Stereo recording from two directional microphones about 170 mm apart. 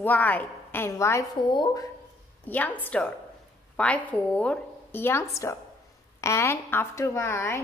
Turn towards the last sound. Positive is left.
turn(degrees=15)  # may be behind; listen again after turning